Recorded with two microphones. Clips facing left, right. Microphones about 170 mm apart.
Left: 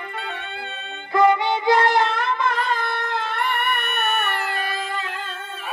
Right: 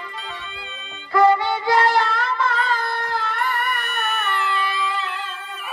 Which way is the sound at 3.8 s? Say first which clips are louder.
Left 2 dB; 60° left (ahead or behind).